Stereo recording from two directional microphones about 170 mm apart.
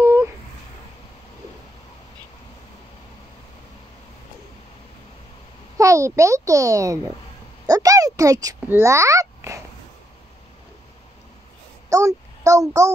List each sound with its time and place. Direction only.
0.0 s a sound: 15° right (ahead or behind)
5.8 s a child's voice: 20° right (ahead or behind)
11.9 s a child's voice: 20° right (ahead or behind)